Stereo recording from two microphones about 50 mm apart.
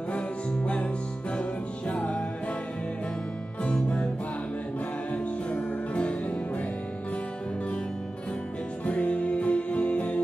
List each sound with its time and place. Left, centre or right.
1.3 s music: left
3.6 s music: left
5.1 s music: left
8.8 s music: left